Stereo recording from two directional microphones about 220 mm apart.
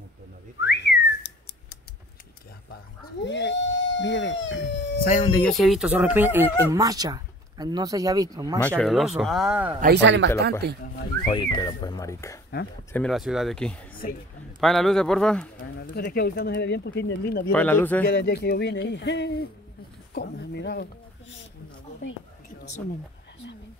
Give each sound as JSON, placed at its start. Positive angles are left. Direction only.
{"t": 0.6, "sound": "whistling", "side_deg": 55}
{"t": 3.3, "sound": "a sound", "side_deg": 55}
{"t": 5.3, "sound": "speech", "side_deg": 5}
{"t": 8.6, "sound": "speech", "side_deg": 5}
{"t": 9.8, "sound": "speech", "side_deg": -45}
{"t": 11.2, "sound": "speech", "side_deg": 20}
{"t": 12.9, "sound": "speech", "side_deg": 0}
{"t": 15.9, "sound": "speech", "side_deg": 45}
{"t": 17.5, "sound": "a man's voice", "side_deg": 5}
{"t": 18.0, "sound": "speech", "side_deg": 45}